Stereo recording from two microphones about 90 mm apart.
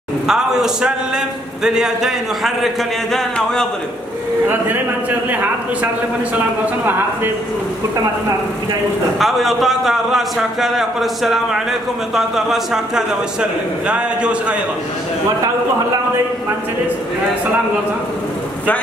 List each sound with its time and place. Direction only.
0.3 s speech: 5° right (ahead or behind)
5.3 s a man's voice: 15° right (ahead or behind)
9.2 s a man's voice: centre (ahead or behind)